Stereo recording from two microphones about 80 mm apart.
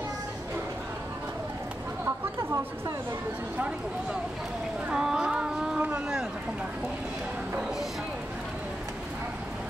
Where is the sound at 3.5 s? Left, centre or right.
Centre.